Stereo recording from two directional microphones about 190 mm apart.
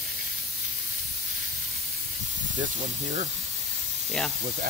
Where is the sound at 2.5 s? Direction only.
40° right (ahead or behind).